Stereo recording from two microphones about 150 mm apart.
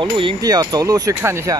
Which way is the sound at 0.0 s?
35° right (ahead or behind).